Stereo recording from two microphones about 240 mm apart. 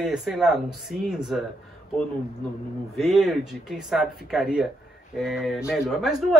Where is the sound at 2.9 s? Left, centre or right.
Centre.